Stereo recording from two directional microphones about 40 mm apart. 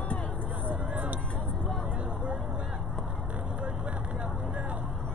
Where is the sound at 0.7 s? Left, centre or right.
Right.